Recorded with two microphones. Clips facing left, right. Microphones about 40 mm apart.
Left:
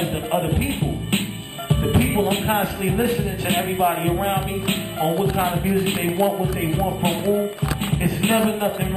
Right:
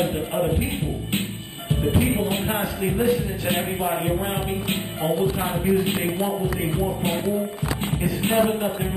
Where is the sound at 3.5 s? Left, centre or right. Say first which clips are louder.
Left 4 dB; left.